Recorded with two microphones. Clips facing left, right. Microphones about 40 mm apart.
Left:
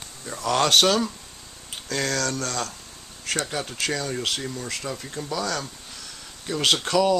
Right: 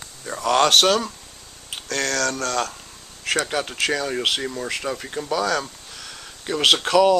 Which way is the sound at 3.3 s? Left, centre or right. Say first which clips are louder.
Right 5 dB; right.